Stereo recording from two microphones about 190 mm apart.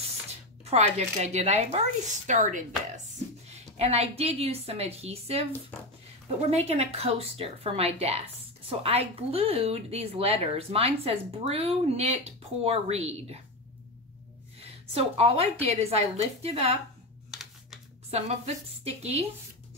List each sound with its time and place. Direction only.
0.7 s a woman's voice: 35° right (ahead or behind)
6.5 s a woman's voice: 35° right (ahead or behind)
15.0 s a woman's voice: 30° right (ahead or behind)
17.3 s typing: centre (ahead or behind)
18.1 s a woman's voice: 35° right (ahead or behind)